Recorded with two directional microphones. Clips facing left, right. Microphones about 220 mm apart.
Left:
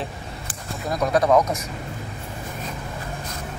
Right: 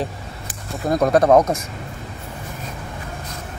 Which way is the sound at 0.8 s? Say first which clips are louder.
Right 5 dB; 50° right (ahead or behind).